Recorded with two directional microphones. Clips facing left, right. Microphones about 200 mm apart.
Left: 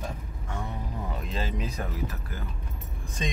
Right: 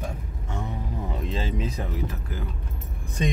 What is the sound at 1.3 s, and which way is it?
Speech, 25° right (ahead or behind).